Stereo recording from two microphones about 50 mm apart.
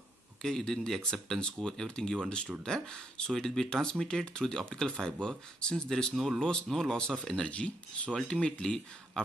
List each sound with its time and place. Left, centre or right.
0.4 s speech: centre
7.4 s speech: left